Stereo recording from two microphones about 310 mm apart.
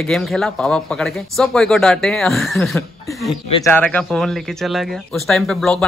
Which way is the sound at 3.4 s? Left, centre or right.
Centre.